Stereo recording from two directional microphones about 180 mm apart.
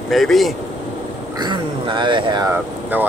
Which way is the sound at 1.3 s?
25° right (ahead or behind).